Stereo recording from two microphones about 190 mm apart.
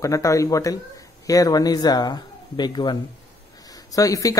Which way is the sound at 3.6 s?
20° left (ahead or behind).